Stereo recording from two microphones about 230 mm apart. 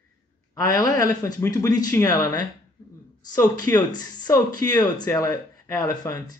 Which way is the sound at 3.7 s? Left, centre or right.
Centre.